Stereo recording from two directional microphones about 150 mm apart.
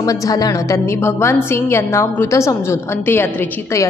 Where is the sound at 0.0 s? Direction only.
25° left (ahead or behind).